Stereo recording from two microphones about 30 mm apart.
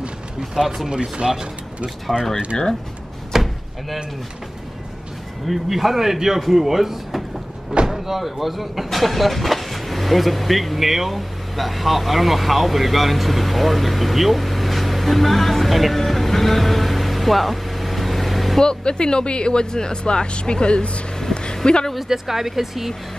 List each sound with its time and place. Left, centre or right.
0.6 s speech: centre
2.1 s speech: centre
2.5 s speech: left
3.3 s door: centre
5.5 s speech: centre
16.0 s vehicle: centre
18.6 s speech: left
21.2 s vehicle: left
21.9 s speech: centre